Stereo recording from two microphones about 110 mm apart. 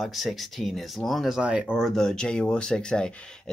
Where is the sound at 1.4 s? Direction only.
10° right (ahead or behind).